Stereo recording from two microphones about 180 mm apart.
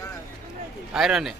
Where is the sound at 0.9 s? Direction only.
5° right (ahead or behind).